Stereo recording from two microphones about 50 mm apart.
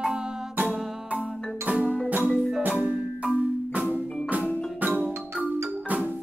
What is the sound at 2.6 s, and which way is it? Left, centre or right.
Marimba, right.